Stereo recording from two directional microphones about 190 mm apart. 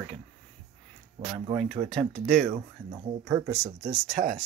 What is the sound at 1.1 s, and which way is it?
Speech, 30° right (ahead or behind).